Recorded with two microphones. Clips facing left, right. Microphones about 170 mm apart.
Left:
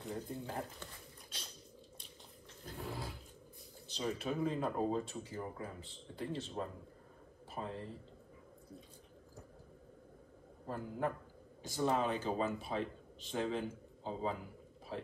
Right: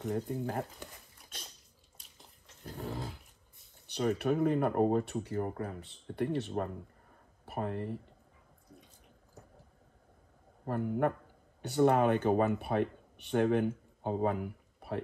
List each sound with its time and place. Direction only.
0.1 s speech: 45° right (ahead or behind)
3.8 s speech: 65° right (ahead or behind)
10.6 s speech: 65° right (ahead or behind)